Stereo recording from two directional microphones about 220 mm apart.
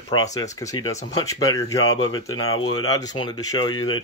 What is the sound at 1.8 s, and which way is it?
Speech, 70° left (ahead or behind).